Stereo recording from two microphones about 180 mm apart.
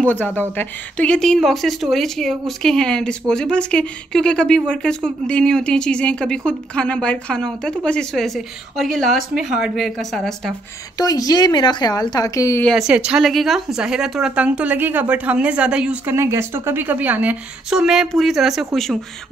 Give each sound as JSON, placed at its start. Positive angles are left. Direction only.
{"t": 0.0, "sound": "speech", "side_deg": 10}
{"t": 11.0, "sound": "speech", "side_deg": 20}
{"t": 12.6, "sound": "speech", "side_deg": 0}